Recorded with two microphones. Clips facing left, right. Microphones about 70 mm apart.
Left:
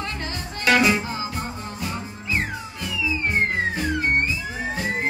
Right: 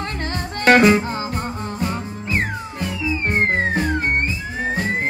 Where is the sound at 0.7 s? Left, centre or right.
Right.